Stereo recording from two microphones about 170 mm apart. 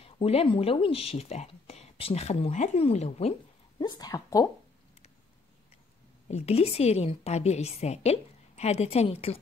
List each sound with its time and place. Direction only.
0.0 s speech: 35° left (ahead or behind)
3.8 s speech: 20° left (ahead or behind)
6.2 s speech: 35° left (ahead or behind)